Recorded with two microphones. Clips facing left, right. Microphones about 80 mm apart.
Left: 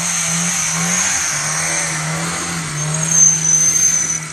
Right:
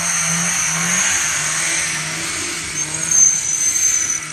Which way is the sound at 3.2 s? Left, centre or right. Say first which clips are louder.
Left 5 dB; left.